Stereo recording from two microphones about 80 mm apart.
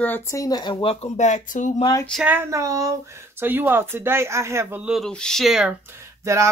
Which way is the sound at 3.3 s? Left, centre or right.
Right.